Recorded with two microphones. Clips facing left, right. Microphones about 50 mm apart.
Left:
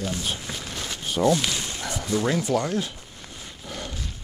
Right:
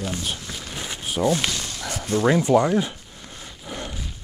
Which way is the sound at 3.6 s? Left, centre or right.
Centre.